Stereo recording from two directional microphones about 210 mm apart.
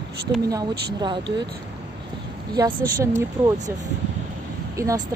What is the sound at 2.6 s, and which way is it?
Speech, 15° right (ahead or behind).